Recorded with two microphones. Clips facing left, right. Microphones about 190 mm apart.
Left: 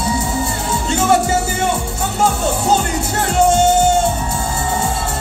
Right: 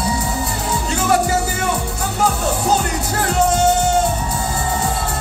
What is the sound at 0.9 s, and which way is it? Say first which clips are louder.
Music: left 3 dB; 25° left (ahead or behind).